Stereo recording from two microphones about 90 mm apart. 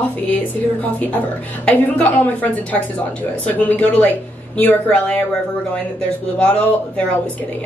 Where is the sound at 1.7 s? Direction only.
10° left (ahead or behind).